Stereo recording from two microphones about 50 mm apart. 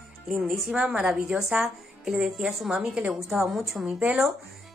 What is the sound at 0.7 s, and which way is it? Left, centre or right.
A woman's voice, centre.